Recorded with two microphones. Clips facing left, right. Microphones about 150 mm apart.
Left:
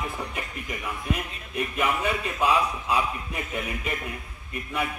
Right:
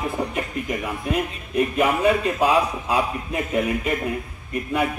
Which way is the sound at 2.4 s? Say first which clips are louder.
Right 2 dB; 40° right (ahead or behind).